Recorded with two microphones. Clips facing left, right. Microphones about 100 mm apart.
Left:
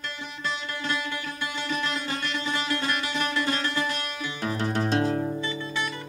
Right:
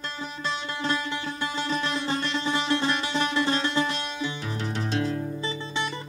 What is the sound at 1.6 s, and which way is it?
Music, 30° right (ahead or behind).